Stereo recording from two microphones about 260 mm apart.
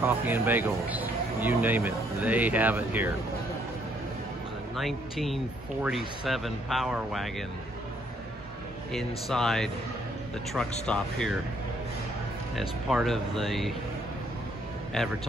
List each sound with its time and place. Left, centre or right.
0.0 s speech: centre
4.7 s speech: centre
8.9 s speech: centre
10.9 s speech: centre
12.5 s speech: centre
15.0 s speech: centre